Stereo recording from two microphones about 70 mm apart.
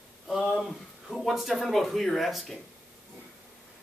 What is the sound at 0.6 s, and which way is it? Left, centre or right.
Speech, centre.